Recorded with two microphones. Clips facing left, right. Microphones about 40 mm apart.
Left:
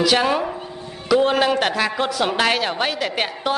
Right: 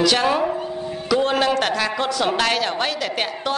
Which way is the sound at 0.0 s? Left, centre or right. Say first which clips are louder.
Even; centre.